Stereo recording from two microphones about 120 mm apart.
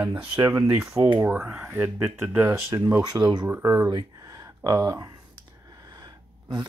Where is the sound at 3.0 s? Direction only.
30° right (ahead or behind).